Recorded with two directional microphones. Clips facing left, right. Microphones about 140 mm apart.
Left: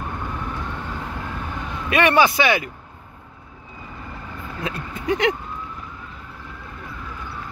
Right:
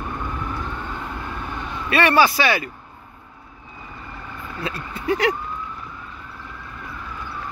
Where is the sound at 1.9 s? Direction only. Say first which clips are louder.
Even; 15° left (ahead or behind).